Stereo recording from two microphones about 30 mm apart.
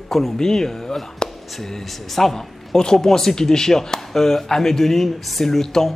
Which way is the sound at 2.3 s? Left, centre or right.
Centre.